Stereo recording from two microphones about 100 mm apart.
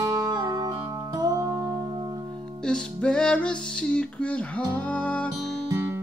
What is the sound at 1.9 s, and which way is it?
Music, 55° right (ahead or behind).